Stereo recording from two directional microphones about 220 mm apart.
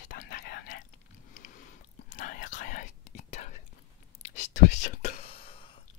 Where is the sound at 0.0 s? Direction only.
40° left (ahead or behind); by 5.8 s 25° left (ahead or behind).